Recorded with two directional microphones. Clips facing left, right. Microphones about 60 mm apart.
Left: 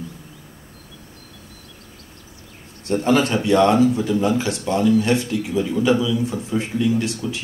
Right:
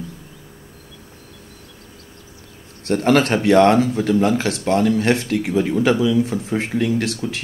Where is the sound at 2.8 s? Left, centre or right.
Right.